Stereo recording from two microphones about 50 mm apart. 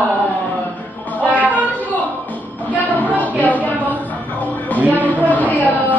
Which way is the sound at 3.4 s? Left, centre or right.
Left.